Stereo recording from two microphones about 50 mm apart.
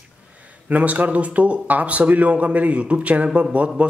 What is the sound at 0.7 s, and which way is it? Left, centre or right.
Speech, right.